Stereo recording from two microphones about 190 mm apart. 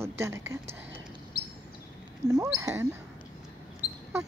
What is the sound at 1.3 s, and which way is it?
Bird, 50° left (ahead or behind).